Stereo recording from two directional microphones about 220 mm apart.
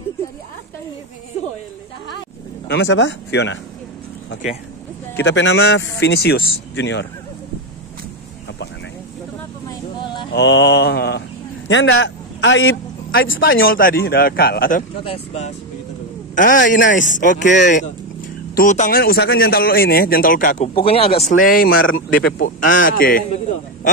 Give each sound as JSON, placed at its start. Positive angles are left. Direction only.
{"t": 2.7, "sound": "speech", "side_deg": 55}
{"t": 5.2, "sound": "speech", "side_deg": 55}
{"t": 10.3, "sound": "a man's voice", "side_deg": 55}
{"t": 13.4, "sound": "a man's voice", "side_deg": 45}
{"t": 21.3, "sound": "a man's voice", "side_deg": 40}